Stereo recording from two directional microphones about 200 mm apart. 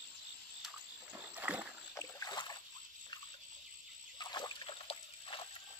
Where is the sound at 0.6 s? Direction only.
5° right (ahead or behind).